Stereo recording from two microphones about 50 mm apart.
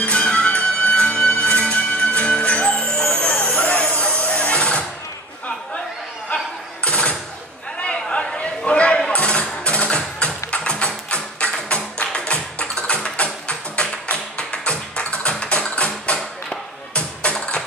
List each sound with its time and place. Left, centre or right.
0.0 s music: left
6.3 s a sound: left
7.8 s chatter: left
9.1 s music: left
10.5 s tap: left
11.7 s music: left